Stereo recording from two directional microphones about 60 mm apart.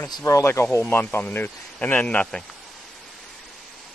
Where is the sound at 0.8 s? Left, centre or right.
Left.